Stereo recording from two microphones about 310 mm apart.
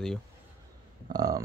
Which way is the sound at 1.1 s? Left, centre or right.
Centre.